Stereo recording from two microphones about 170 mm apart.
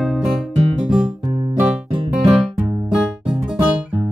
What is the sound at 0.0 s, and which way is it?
Music, centre (ahead or behind).